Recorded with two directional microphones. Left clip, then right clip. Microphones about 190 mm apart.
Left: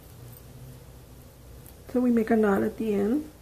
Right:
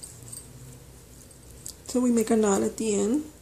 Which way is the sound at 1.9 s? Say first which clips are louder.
Even; 20° right (ahead or behind).